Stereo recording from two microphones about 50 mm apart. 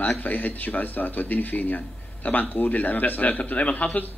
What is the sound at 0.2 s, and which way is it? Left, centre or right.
A man's voice, left.